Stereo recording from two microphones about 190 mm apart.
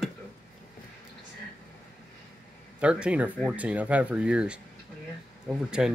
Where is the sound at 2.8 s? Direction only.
5° right (ahead or behind).